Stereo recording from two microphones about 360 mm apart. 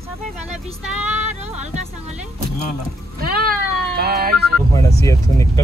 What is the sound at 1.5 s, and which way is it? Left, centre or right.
Music, centre.